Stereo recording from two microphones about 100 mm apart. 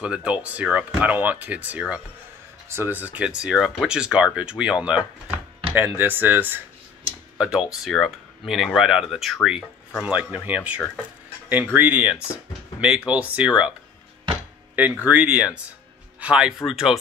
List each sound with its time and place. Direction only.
0.0 s speech: 10° right (ahead or behind)
7.3 s speech: 10° right (ahead or behind)
15.0 s speech: 15° right (ahead or behind)